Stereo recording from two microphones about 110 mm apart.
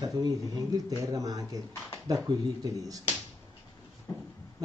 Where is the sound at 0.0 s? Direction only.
35° right (ahead or behind).